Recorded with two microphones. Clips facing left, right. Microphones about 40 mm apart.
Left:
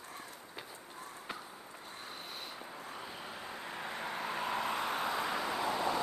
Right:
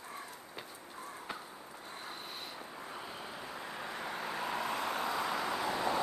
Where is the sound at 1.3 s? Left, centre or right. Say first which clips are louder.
Right 1 dB; centre.